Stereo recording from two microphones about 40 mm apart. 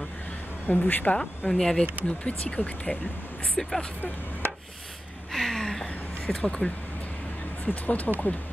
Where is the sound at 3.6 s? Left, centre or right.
Centre.